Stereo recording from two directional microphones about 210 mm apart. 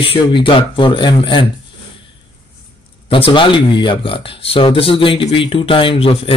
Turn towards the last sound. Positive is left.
turn(degrees=25)  # may be behind; listen again after turning